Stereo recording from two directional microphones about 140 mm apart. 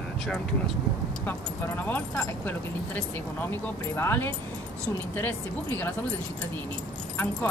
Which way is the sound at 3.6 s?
15° left (ahead or behind).